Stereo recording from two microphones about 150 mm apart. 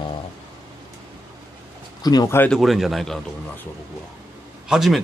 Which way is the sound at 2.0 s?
25° left (ahead or behind).